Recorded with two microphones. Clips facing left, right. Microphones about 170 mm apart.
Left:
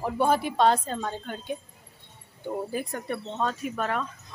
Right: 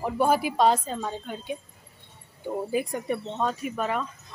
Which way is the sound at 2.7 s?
10° right (ahead or behind).